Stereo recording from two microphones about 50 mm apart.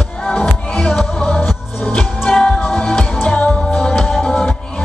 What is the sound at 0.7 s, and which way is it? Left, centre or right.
Music, centre.